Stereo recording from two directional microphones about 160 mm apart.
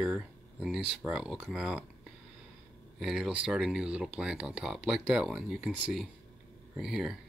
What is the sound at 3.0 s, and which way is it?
Speech, 5° right (ahead or behind).